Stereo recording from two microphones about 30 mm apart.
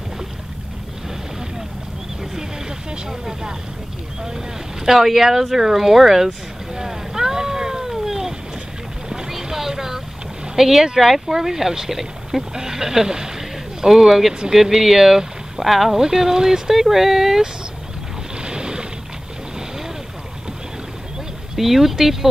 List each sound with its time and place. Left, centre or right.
3.1 s speech: centre
4.8 s speech: centre
6.7 s boat: centre
9.3 s a sound: centre
10.5 s speech: centre
12.5 s speech: centre
16.0 s speech: centre
18.4 s boat: right
21.5 s speech: centre